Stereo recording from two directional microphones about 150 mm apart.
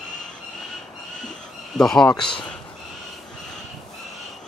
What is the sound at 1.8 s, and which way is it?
Speech, 5° left (ahead or behind).